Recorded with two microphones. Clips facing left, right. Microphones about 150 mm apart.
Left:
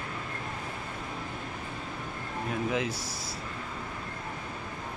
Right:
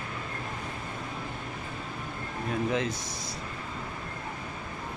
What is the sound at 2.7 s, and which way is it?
Speech, 5° left (ahead or behind).